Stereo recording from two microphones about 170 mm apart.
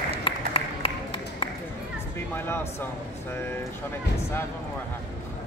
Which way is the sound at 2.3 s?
15° left (ahead or behind).